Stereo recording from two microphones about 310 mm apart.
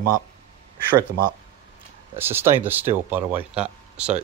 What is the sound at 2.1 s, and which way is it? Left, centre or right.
Speech, centre.